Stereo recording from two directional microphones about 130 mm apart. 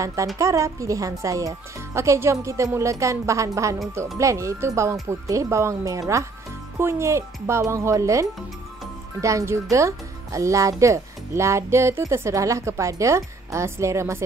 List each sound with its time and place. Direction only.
0.0 s speech: 25° right (ahead or behind)